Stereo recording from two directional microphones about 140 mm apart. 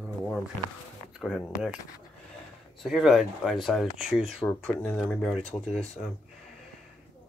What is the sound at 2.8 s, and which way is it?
Speech, centre (ahead or behind).